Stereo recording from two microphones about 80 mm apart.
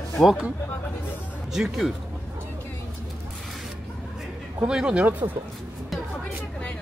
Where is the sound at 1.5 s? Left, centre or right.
Centre.